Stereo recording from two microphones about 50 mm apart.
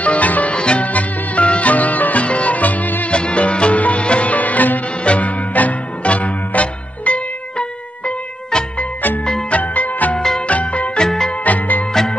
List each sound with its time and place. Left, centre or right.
0.0 s music: left
3.1 s music: left
9.6 s music: left
10.1 s music: centre
10.4 s music: left
11.1 s music: centre
11.4 s music: left